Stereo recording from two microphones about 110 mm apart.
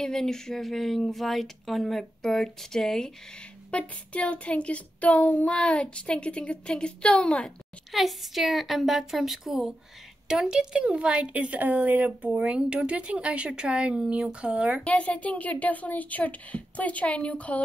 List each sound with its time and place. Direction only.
0.0 s speech: 5° left (ahead or behind)
7.9 s speech: centre (ahead or behind)
14.8 s speech: 10° left (ahead or behind)